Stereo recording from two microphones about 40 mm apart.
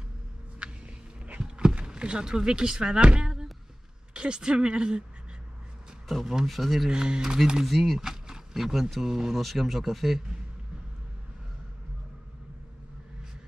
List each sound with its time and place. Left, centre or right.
1.4 s a sound: centre
1.9 s speech: right
6.4 s speech: centre
6.9 s speech: centre
7.6 s speech: centre
8.0 s a sound: centre
9.1 s speech: centre